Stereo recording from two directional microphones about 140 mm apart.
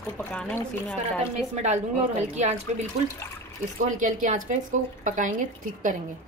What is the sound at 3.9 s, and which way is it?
A woman's voice, 65° right (ahead or behind).